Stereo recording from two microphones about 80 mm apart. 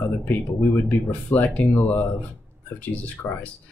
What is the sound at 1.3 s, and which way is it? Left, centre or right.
Speech, left.